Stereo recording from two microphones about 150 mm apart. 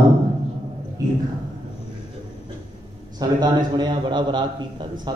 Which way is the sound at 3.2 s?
30° right (ahead or behind).